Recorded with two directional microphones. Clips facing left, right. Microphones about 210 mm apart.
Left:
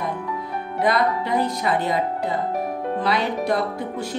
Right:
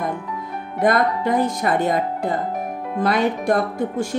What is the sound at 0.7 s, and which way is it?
Speech, 50° right (ahead or behind).